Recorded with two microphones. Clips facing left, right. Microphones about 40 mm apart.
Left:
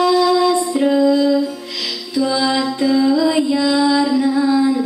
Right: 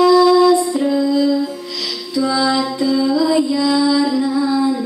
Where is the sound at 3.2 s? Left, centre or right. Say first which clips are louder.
Even; left.